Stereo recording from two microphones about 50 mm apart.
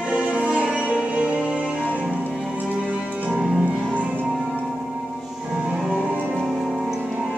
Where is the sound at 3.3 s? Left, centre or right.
Centre.